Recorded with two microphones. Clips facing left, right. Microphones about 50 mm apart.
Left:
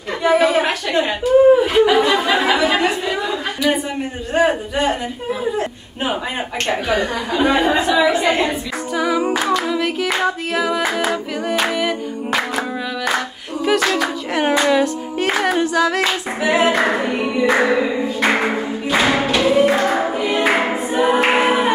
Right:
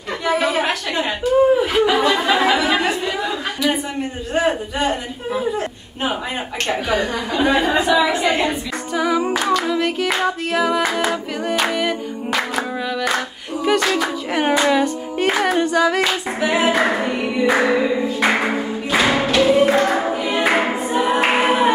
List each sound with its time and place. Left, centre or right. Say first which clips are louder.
0.2 s chuckle: left 4 dB; centre
4.3 s a sound: left 3 dB; centre
6.7 s a woman's voice: left 1 dB; centre
9.4 s music: even; centre
13.7 s music: left 1 dB; centre
21.0 s a capella: left 3 dB; centre